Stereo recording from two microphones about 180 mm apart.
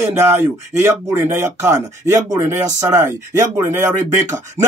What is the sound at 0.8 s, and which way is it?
Speech, 15° right (ahead or behind).